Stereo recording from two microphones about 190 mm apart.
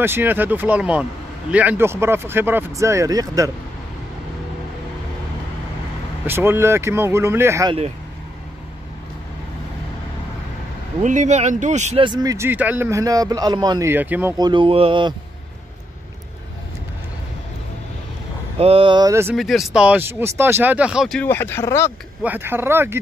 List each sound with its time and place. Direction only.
0.0 s a man's voice: 10° right (ahead or behind)
6.2 s a man's voice: 10° right (ahead or behind)
11.0 s speech: 40° right (ahead or behind)
12.0 s a man's voice: 20° right (ahead or behind)
14.4 s mantra: 25° right (ahead or behind)
18.6 s mantra: 30° right (ahead or behind)
19.3 s a man's voice: centre (ahead or behind)
21.2 s speech: 10° left (ahead or behind)
22.2 s a man's voice: 10° right (ahead or behind)